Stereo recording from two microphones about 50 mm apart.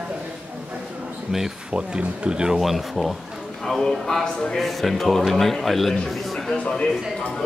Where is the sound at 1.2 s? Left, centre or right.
Centre.